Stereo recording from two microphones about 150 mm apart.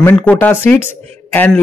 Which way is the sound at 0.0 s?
10° left (ahead or behind).